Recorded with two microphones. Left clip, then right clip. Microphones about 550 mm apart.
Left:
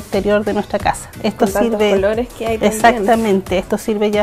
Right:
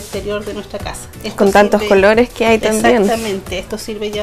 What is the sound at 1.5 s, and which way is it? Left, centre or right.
A woman's voice, right.